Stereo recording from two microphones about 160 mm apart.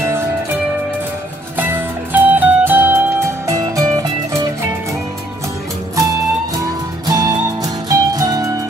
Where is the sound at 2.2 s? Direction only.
10° right (ahead or behind).